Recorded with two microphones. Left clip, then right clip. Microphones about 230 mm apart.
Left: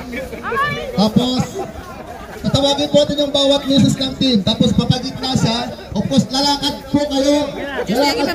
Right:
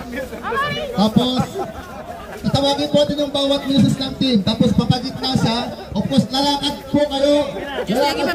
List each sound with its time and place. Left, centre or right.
0.5 s speech: right
0.9 s speech: left
2.5 s a man's voice: left
7.8 s speech: right